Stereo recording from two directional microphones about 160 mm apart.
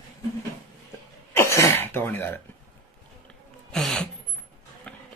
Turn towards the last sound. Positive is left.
turn(degrees=5)  # may be behind; listen again after turning